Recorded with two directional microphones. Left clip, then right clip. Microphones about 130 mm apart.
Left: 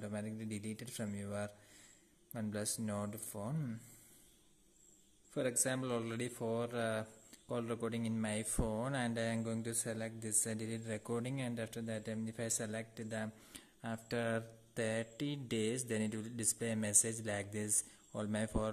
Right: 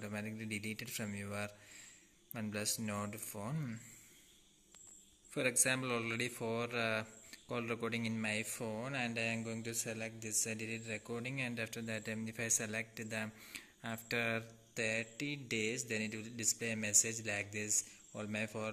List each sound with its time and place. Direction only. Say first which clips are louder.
0.0 s speech: even; 20° left (ahead or behind)
3.3 s speech: left 2 dB; 10° left (ahead or behind)
5.3 s speech: right 2 dB; 20° left (ahead or behind)
14.7 s speech: right 1 dB; 45° left (ahead or behind)